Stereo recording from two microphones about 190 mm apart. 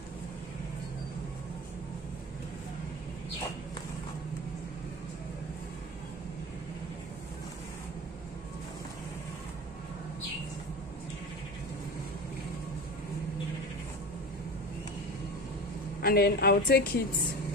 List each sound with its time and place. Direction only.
16.0 s a woman's voice: 55° left (ahead or behind)